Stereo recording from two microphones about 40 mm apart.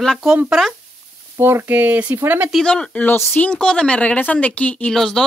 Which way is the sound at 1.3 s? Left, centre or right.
Right.